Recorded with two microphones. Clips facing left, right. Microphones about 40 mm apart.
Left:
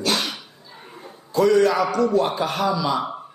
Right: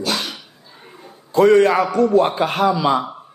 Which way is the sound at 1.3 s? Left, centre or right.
Right.